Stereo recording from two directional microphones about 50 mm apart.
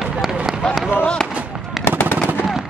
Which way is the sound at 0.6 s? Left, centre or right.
Centre.